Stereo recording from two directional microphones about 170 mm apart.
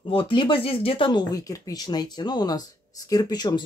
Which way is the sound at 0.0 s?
30° left (ahead or behind).